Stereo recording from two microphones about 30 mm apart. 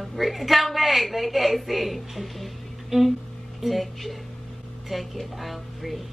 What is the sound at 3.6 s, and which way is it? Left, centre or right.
Speech, centre.